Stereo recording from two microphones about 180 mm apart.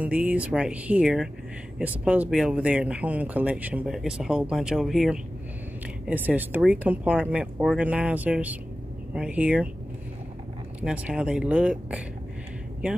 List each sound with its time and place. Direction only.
0.0 s speech: 10° right (ahead or behind)
10.8 s speech: 5° right (ahead or behind)